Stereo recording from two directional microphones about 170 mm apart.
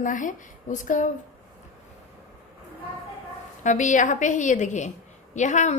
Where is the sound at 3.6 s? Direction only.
45° left (ahead or behind).